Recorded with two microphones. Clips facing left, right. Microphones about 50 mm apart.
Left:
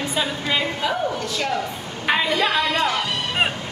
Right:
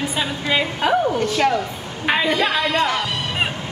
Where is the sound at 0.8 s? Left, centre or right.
Right.